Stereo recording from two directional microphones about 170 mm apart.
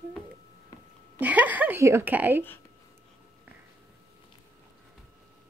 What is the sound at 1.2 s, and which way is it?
A woman's voice, 10° right (ahead or behind).